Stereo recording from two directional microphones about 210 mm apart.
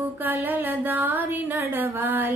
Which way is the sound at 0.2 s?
10° right (ahead or behind).